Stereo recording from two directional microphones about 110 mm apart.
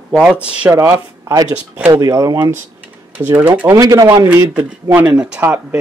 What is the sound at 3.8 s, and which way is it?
Speech, 35° right (ahead or behind).